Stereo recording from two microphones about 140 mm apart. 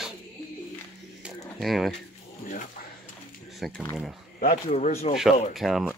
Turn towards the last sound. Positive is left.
turn(degrees=0)  # may be behind; listen again after turning